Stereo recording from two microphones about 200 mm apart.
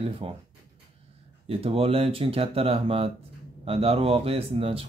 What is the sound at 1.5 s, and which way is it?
Speech, 30° right (ahead or behind).